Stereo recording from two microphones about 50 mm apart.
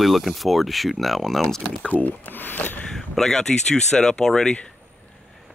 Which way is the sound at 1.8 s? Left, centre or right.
Left.